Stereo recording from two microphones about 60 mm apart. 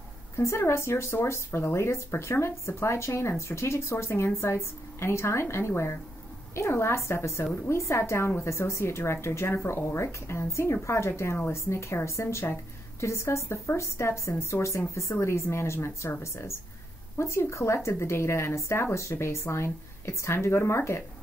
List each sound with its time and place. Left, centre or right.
0.4 s speech: left